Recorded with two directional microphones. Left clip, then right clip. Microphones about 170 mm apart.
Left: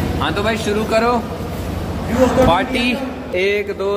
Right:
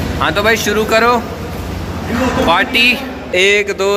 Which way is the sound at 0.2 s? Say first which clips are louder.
Right 7 dB; 15° right (ahead or behind).